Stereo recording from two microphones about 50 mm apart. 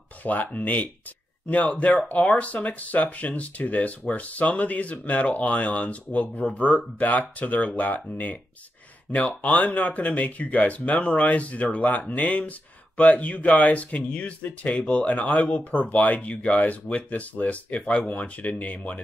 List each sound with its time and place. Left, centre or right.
0.2 s speech: left